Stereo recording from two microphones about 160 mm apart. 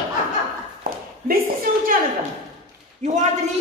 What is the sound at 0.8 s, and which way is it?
Speech, 65° right (ahead or behind).